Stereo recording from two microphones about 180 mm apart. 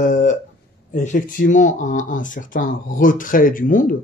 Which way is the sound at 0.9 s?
45° left (ahead or behind).